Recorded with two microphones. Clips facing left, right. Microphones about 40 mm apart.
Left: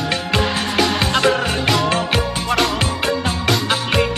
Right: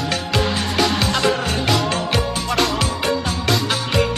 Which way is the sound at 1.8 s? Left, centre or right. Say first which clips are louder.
Left 2 dB; left.